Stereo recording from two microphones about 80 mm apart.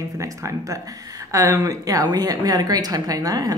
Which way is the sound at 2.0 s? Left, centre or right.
Right.